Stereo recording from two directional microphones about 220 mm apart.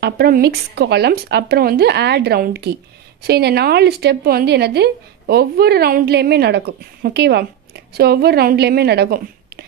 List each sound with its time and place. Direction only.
0.0 s a woman's voice: 45° right (ahead or behind)